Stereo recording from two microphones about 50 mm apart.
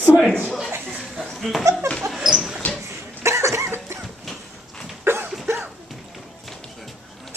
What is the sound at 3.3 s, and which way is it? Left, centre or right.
Cough, right.